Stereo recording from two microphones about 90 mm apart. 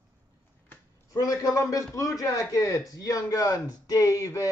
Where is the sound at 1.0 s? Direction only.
40° left (ahead or behind).